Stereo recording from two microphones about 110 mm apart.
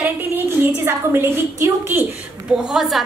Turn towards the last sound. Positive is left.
turn(degrees=0)  # may be behind; listen again after turning